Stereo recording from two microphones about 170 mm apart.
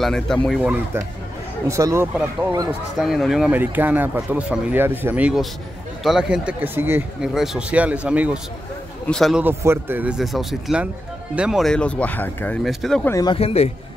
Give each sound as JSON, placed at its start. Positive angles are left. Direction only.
{"t": 0.0, "sound": "speech", "side_deg": 0}
{"t": 1.7, "sound": "speech", "side_deg": -20}
{"t": 3.0, "sound": "speech", "side_deg": 0}
{"t": 9.4, "sound": "speech", "side_deg": -15}
{"t": 13.1, "sound": "speech", "side_deg": 20}
{"t": 13.4, "sound": "a man's voice", "side_deg": 35}